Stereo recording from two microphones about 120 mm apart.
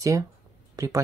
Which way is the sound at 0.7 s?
25° right (ahead or behind).